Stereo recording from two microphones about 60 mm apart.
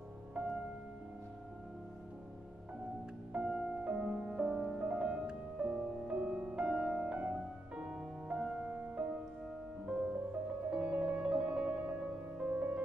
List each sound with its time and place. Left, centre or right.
0.3 s music: centre
3.3 s music: centre
10.7 s music: right